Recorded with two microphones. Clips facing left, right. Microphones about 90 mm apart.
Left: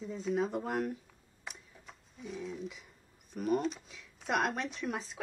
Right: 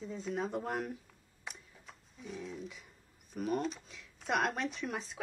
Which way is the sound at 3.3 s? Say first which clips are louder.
Left 3 dB; centre (ahead or behind).